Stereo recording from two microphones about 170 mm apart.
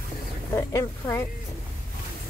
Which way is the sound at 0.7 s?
15° left (ahead or behind).